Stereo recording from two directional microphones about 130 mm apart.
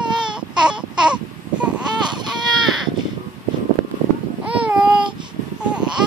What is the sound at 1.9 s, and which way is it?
Baby cry, 35° right (ahead or behind).